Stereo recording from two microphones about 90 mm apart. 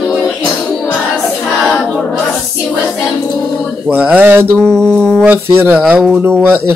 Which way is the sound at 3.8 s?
20° right (ahead or behind).